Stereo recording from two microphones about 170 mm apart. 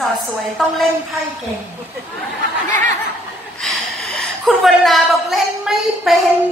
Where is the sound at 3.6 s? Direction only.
Centre (ahead or behind).